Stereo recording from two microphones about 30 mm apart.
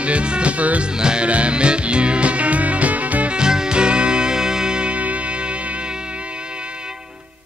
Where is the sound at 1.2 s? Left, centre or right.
Right.